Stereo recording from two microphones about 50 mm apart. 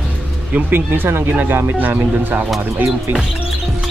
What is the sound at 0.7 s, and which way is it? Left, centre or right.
Music, right.